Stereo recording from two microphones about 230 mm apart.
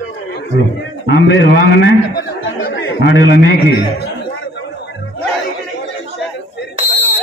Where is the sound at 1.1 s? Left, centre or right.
Left.